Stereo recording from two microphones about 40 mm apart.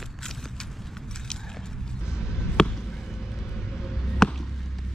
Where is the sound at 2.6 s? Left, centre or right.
Centre.